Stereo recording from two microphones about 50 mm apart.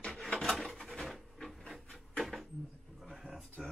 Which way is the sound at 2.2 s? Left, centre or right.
Centre.